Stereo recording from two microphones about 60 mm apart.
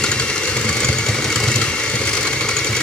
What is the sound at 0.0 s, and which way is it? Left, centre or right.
Vehicle, centre.